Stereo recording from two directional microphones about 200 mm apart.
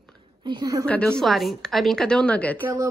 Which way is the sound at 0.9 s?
5° left (ahead or behind).